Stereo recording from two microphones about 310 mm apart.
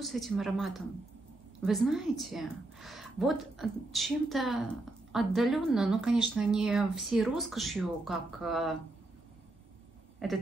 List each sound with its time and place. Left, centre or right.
0.0 s speech: centre